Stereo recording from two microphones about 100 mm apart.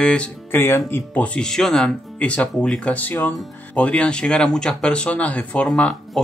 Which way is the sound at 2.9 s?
20° left (ahead or behind).